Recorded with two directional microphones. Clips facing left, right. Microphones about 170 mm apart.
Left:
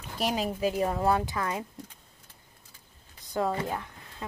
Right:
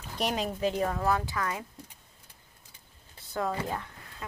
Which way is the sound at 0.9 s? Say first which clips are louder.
Left 3 dB; 25° left (ahead or behind).